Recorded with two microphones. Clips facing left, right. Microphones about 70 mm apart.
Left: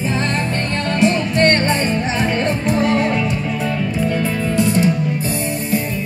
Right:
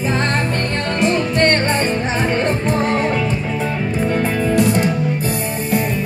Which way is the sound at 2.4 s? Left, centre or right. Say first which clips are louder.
Even; right.